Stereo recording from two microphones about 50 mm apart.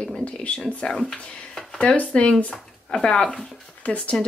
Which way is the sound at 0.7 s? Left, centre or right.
Left.